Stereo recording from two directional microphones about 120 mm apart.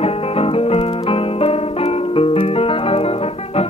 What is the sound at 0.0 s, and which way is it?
Music, 55° left (ahead or behind).